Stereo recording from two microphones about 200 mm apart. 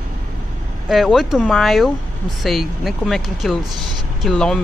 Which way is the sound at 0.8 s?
Centre (ahead or behind).